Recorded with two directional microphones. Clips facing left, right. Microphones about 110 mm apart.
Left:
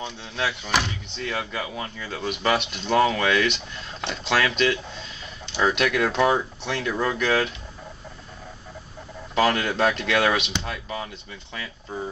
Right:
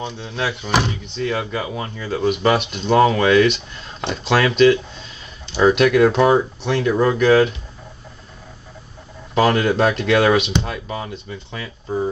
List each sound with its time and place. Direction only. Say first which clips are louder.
0.4 s speech: right 5 dB; 15° right (ahead or behind)
5.6 s speech: right 9 dB; 15° right (ahead or behind)
9.4 s speech: right 5 dB; 20° right (ahead or behind)